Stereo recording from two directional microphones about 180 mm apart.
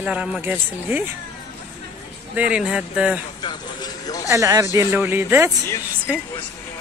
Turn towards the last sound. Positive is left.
turn(degrees=-10)  # may be behind; listen again after turning